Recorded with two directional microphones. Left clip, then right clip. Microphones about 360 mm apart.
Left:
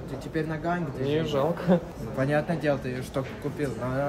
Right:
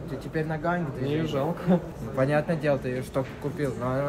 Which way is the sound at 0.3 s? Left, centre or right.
Centre.